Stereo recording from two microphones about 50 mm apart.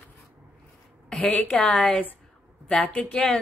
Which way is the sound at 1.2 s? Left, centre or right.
Left.